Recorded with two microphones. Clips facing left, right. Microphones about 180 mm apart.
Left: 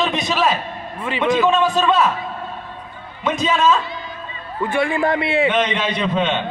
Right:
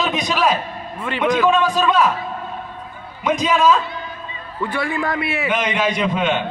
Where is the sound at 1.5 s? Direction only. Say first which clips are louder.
Even; 15° right (ahead or behind).